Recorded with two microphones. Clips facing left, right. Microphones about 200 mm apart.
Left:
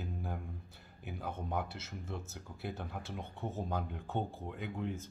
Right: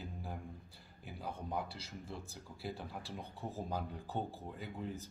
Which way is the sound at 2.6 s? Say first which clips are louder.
Left 2 dB; centre (ahead or behind).